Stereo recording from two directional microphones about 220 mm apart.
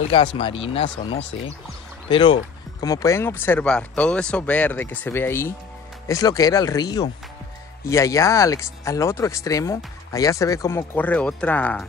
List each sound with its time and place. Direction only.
0.4 s speech: 25° left (ahead or behind); by 11.8 s 5° left (ahead or behind)